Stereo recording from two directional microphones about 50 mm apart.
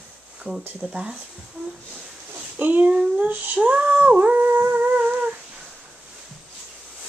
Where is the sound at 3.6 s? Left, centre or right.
Right.